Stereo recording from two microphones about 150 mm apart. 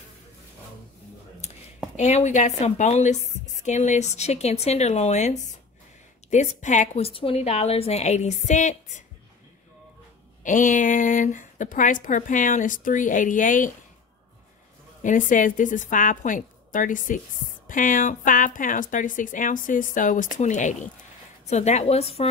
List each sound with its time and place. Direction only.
1.4 s a sound: 45° left (ahead or behind)
2.0 s a woman's voice: 50° left (ahead or behind)
7.1 s a woman's voice: 40° left (ahead or behind)
10.4 s speech: 60° left (ahead or behind)
15.0 s a woman's voice: 60° left (ahead or behind); by 22.3 s 40° left (ahead or behind)